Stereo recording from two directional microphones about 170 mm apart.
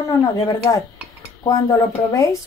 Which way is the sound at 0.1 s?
20° left (ahead or behind).